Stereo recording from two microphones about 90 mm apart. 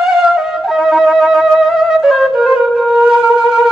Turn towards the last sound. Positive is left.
turn(degrees=-5)  # may be behind; listen again after turning